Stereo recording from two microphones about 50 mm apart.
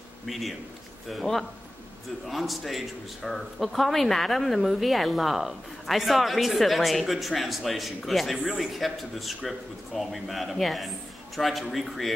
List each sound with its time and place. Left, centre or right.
0.3 s a man's voice: centre